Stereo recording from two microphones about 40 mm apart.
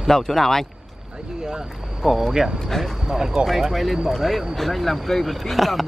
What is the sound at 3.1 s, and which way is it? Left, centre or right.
Speech, centre.